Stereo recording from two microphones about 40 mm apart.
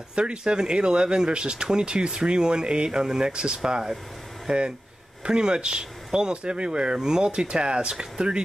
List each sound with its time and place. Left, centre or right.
0.1 s speech: right